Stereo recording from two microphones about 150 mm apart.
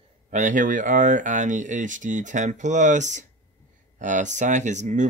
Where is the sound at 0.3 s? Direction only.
55° right (ahead or behind).